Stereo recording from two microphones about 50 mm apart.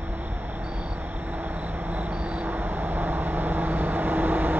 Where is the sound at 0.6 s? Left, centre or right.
Right.